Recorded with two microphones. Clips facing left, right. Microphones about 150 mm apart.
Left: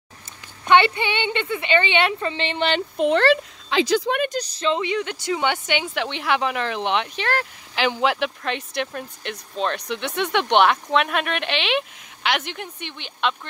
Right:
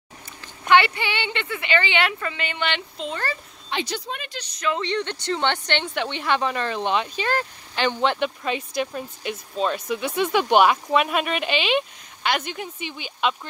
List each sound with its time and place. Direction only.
0.7 s a woman's voice: 20° left (ahead or behind)
3.0 s speech: 70° left (ahead or behind); by 4.2 s 90° left
4.2 s speech: 45° left (ahead or behind)
4.6 s a woman's voice: 25° left (ahead or behind)
4.8 s speech: 5° left (ahead or behind)